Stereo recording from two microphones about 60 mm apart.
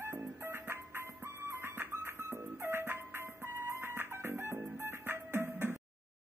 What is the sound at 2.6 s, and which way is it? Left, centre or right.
Music, right.